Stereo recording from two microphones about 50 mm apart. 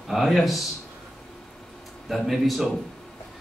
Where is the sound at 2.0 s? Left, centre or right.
Centre.